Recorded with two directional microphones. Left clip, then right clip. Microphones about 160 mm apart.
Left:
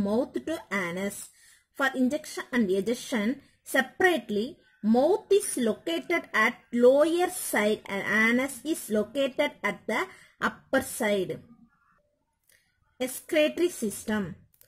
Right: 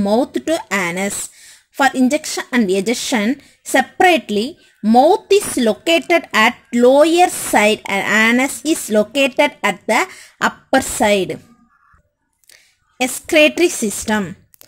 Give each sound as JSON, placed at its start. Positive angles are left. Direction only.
{"t": 0.0, "sound": "speech", "side_deg": -25}
{"t": 12.9, "sound": "speech", "side_deg": -25}